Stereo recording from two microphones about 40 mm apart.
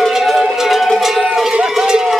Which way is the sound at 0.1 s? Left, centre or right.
Centre.